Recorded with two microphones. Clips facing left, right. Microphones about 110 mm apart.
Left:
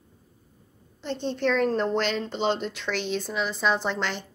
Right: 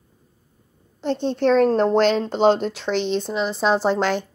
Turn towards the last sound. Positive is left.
turn(degrees=-40)  # may be behind; listen again after turning